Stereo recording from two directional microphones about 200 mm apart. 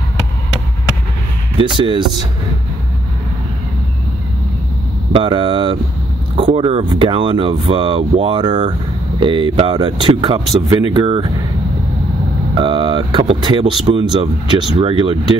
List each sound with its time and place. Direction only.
1.6 s speech: 25° right (ahead or behind)
5.1 s speech: 25° right (ahead or behind)
12.5 s speech: 25° right (ahead or behind)